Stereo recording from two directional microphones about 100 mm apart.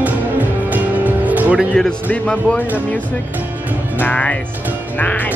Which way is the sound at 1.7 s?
5° left (ahead or behind).